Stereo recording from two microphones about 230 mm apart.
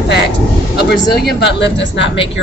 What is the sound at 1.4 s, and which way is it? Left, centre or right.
Speech, left.